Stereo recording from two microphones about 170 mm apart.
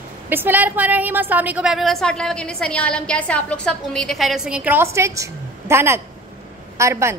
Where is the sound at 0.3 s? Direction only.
10° right (ahead or behind).